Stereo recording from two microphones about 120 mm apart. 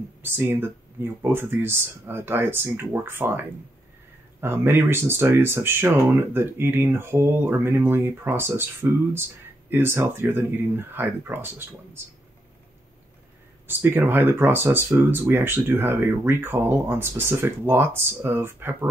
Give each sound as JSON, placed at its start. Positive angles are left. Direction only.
{"t": 0.2, "sound": "speech", "side_deg": -20}
{"t": 4.4, "sound": "speech", "side_deg": -20}
{"t": 9.7, "sound": "speech", "side_deg": -20}
{"t": 13.7, "sound": "speech", "side_deg": -20}